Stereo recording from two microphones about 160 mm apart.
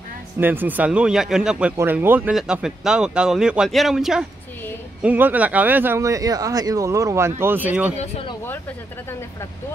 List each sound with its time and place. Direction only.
0.4 s speech: 10° right (ahead or behind)
8.0 s speech: 35° left (ahead or behind)